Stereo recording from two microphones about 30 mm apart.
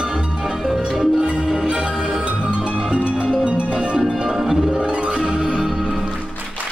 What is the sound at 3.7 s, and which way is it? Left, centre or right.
Music, right.